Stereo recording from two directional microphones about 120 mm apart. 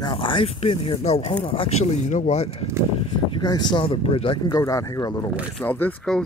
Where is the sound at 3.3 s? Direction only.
35° left (ahead or behind).